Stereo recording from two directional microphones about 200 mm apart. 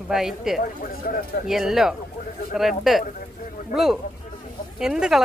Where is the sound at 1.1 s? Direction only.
45° left (ahead or behind).